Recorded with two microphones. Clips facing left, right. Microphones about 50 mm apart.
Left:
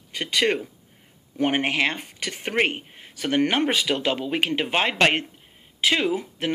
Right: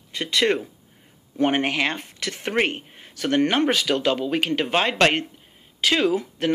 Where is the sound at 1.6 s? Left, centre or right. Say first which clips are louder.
Even; left.